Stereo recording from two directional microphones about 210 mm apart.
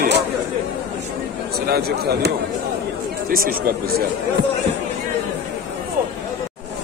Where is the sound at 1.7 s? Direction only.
45° right (ahead or behind).